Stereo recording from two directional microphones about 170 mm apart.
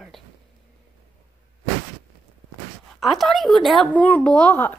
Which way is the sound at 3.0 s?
Centre (ahead or behind).